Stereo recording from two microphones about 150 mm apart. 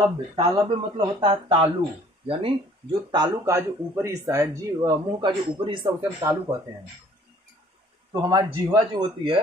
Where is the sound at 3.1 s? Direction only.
25° right (ahead or behind).